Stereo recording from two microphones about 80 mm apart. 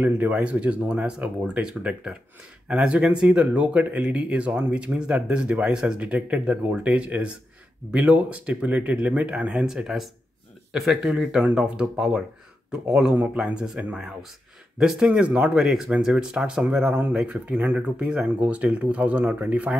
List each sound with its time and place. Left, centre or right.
0.0 s speech: centre
13.1 s speech: centre
16.9 s speech: right